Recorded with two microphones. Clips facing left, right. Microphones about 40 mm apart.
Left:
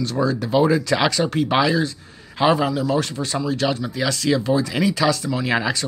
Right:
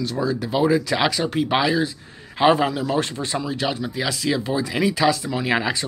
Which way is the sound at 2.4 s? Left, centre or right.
Right.